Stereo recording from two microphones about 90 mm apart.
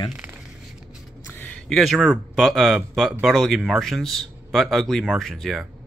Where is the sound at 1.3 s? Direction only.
20° left (ahead or behind).